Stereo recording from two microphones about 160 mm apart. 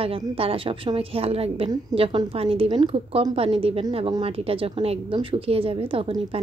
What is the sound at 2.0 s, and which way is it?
A woman's voice, 35° right (ahead or behind).